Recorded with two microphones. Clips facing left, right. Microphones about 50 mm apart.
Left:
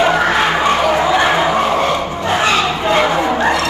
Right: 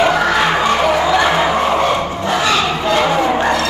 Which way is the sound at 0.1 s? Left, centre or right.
Left.